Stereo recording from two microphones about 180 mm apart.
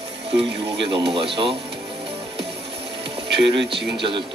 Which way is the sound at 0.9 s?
30° right (ahead or behind).